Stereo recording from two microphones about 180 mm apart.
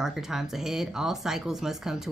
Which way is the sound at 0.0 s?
Centre (ahead or behind).